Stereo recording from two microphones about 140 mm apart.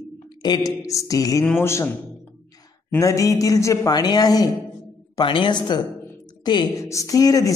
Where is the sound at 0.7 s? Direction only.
25° left (ahead or behind).